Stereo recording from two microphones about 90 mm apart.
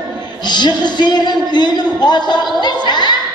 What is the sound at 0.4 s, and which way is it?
Speech, 55° left (ahead or behind).